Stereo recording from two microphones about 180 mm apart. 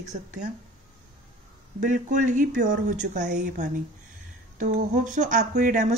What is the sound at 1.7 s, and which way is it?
A woman's voice, 45° right (ahead or behind).